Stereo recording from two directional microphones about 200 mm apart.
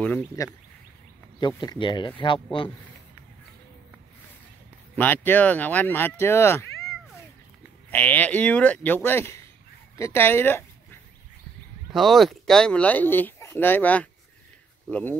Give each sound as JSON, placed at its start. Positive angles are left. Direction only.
{"t": 0.0, "sound": "speech", "side_deg": 10}
{"t": 1.6, "sound": "speech", "side_deg": 20}
{"t": 4.9, "sound": "speech", "side_deg": 10}
{"t": 7.9, "sound": "speech", "side_deg": 10}
{"t": 11.9, "sound": "speech", "side_deg": 0}